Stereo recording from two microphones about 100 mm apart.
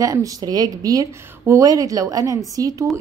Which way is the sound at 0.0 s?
35° right (ahead or behind).